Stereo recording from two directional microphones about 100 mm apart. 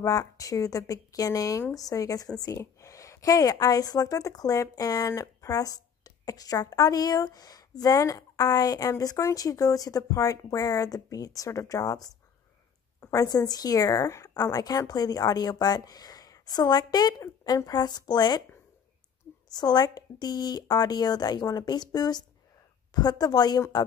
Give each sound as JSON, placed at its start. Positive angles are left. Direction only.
{"t": 0.0, "sound": "a woman's voice", "side_deg": 35}
{"t": 19.5, "sound": "speech", "side_deg": 45}